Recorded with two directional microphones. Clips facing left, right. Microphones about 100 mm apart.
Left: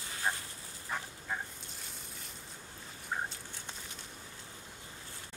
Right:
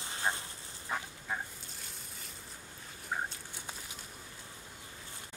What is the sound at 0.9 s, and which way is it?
Dog, 5° right (ahead or behind).